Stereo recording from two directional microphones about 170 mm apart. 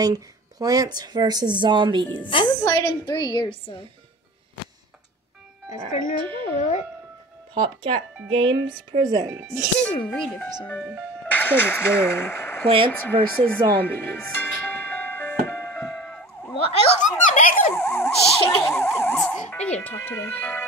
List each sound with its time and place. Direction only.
0.0 s speech: 20° right (ahead or behind)
2.2 s a woman's voice: 25° left (ahead or behind)
6.1 s speech: 30° right (ahead or behind)
7.5 s speech: 30° right (ahead or behind)
9.8 s speech: 5° left (ahead or behind)
12.6 s speech: 30° right (ahead or behind)
13.0 s speech: 10° left (ahead or behind)
13.8 s music: 10° left (ahead or behind)
16.5 s snicker: 35° left (ahead or behind)
17.7 s emergency vehicle: 15° left (ahead or behind)
19.1 s speech: 5° left (ahead or behind)